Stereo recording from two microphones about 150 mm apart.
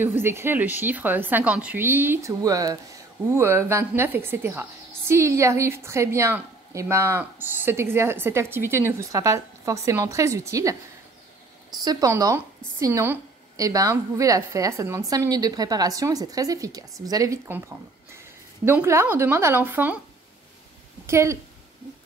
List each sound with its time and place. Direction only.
0.0 s a woman's voice: 15° right (ahead or behind)
11.8 s a woman's voice: 25° right (ahead or behind)
21.1 s a woman's voice: 20° right (ahead or behind)